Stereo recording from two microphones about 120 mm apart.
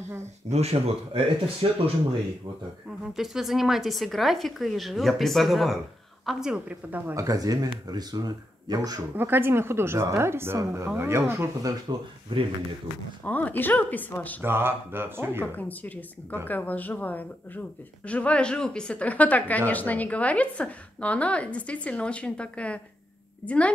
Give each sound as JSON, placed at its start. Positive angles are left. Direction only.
{"t": 0.5, "sound": "speech", "side_deg": -60}
{"t": 3.2, "sound": "a woman's voice", "side_deg": -5}
{"t": 7.2, "sound": "speech", "side_deg": -30}
{"t": 9.1, "sound": "a woman's voice", "side_deg": -20}
{"t": 12.3, "sound": "speech", "side_deg": -45}
{"t": 13.2, "sound": "speech", "side_deg": 15}
{"t": 14.4, "sound": "a woman's voice", "side_deg": -20}
{"t": 15.4, "sound": "speech", "side_deg": 15}